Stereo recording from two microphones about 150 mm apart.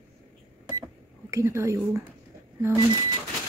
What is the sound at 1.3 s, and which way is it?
Speech, 20° right (ahead or behind).